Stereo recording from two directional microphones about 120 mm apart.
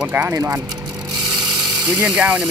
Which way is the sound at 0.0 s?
15° right (ahead or behind).